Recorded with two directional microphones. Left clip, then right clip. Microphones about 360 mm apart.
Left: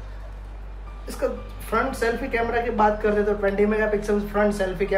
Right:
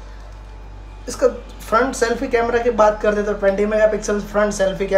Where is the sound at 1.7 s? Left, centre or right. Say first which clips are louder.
Right 6 dB; centre.